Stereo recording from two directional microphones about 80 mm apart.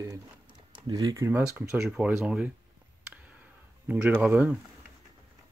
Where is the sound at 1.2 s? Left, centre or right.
Right.